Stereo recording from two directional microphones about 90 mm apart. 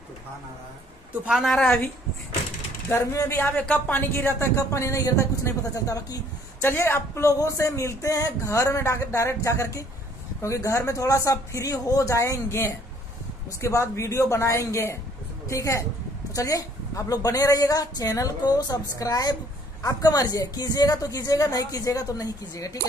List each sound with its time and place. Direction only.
1.3 s a woman's voice: 5° left (ahead or behind)
2.9 s speech: 30° left (ahead or behind)
6.6 s speech: 25° left (ahead or behind)